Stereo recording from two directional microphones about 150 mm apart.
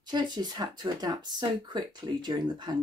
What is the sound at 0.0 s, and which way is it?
Speech, 30° right (ahead or behind).